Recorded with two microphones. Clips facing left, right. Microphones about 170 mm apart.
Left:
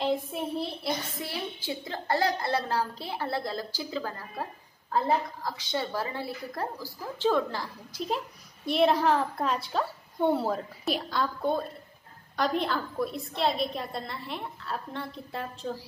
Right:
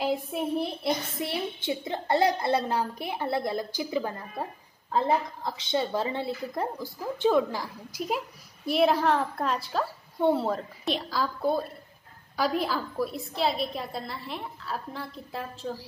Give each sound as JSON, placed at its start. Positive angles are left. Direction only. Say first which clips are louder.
{"t": 0.0, "sound": "a child's voice", "louder": "right 1 dB", "side_deg": -15}